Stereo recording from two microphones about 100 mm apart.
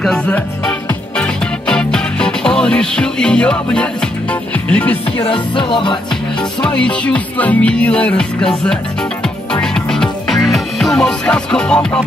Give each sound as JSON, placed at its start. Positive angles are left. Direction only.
{"t": 1.2, "sound": "music", "side_deg": 10}
{"t": 5.2, "sound": "music", "side_deg": 60}
{"t": 6.6, "sound": "music", "side_deg": 10}